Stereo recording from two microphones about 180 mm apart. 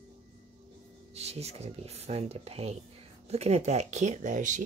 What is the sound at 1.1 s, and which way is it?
Speech, 35° right (ahead or behind).